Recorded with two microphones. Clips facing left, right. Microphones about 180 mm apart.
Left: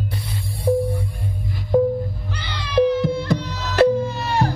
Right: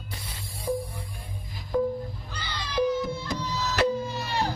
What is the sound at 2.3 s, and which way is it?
Music, 70° left (ahead or behind).